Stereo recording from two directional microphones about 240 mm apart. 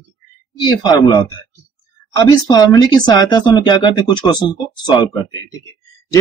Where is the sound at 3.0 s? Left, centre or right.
Centre.